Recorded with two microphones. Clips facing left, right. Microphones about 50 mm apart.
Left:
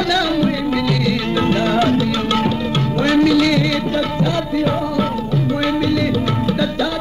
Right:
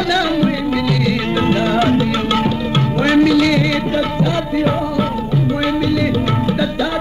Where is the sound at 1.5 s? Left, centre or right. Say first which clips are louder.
Right 1 dB; centre.